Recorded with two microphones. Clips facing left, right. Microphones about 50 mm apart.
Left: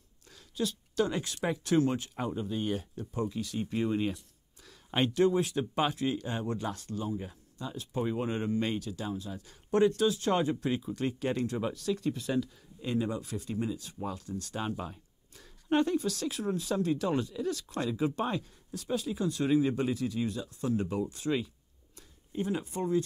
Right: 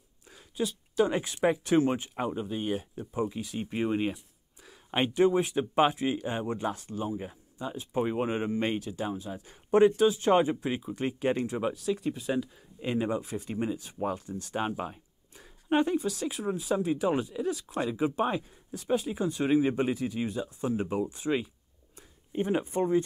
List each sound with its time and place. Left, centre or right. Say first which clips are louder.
0.3 s a sound: right 2 dB; centre
1.1 s speech: right 6 dB; right
22.3 s speech: right 5 dB; right